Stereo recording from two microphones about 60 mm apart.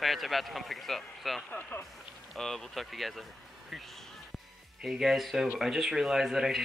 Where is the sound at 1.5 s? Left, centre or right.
Left.